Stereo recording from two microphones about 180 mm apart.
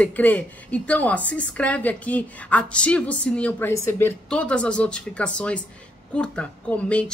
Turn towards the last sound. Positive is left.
turn(degrees=5)  # may be behind; listen again after turning